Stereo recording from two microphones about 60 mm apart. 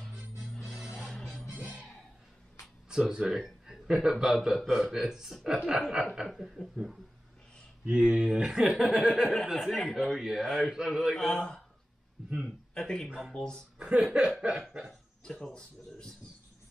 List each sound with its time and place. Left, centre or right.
0.4 s music: centre
2.9 s speech: centre
7.8 s speech: right
11.1 s speech: centre
13.7 s a sound: centre
15.2 s speech: centre